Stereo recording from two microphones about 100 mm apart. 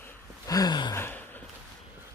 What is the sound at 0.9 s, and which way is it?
Gasp, 20° left (ahead or behind).